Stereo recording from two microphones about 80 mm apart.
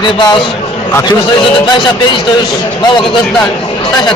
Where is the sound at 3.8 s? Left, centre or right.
Left.